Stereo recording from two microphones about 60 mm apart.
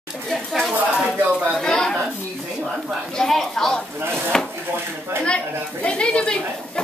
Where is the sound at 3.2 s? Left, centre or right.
Centre.